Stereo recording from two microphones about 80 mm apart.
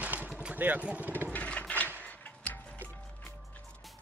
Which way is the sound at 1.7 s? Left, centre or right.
Right.